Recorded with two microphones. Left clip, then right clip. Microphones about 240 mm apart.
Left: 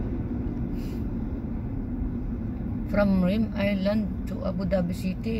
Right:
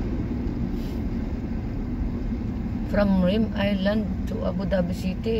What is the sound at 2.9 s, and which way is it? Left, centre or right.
Speech, centre.